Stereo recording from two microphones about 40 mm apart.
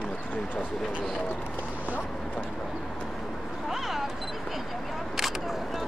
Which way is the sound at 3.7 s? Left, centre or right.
Centre.